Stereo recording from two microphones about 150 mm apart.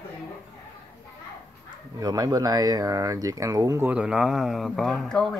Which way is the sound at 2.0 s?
25° right (ahead or behind).